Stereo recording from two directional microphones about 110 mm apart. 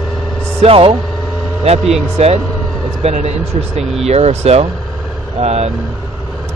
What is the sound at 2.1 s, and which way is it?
Speech, 75° right (ahead or behind).